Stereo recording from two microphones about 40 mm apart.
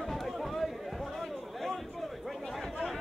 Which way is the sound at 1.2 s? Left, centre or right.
Centre.